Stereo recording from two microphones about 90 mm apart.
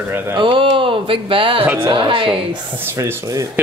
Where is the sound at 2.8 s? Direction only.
25° right (ahead or behind).